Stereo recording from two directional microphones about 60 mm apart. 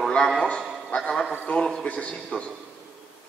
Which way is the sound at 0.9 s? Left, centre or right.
Centre.